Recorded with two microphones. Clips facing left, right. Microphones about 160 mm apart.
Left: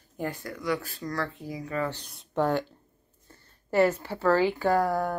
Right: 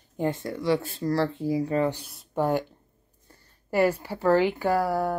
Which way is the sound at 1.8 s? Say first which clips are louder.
Right 6 dB; 5° right (ahead or behind).